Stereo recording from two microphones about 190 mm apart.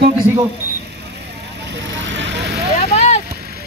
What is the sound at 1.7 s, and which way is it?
Vehicle, 70° right (ahead or behind).